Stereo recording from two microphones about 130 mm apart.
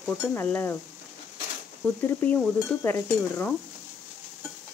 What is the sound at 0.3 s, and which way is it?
Speech, 15° left (ahead or behind).